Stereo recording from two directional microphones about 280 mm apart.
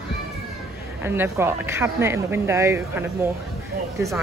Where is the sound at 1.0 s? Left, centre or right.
Centre.